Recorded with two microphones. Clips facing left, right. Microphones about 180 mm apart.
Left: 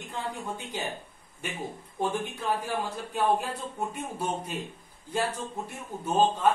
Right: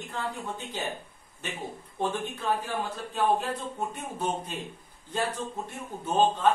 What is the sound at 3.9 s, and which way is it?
Speech, 10° left (ahead or behind).